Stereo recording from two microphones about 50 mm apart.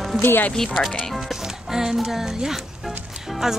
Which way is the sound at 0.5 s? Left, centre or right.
Centre.